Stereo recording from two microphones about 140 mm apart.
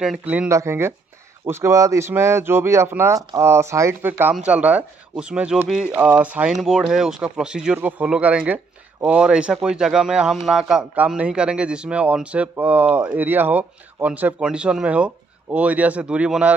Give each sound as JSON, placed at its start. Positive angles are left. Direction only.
{"t": 0.0, "sound": "speech", "side_deg": -10}